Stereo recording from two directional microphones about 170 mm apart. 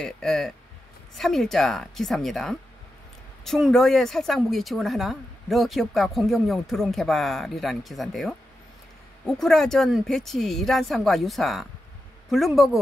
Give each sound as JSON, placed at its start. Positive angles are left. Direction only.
{"t": 0.0, "sound": "speech", "side_deg": 0}